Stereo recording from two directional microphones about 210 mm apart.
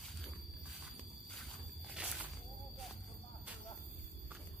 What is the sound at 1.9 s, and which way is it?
Walk, 5° right (ahead or behind).